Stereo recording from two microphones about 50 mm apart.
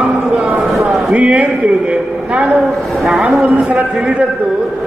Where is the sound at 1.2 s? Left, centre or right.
Right.